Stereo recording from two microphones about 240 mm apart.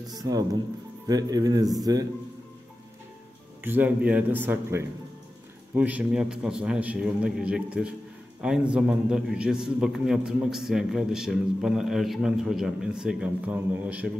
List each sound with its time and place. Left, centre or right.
0.0 s speech: centre
3.6 s a man's voice: centre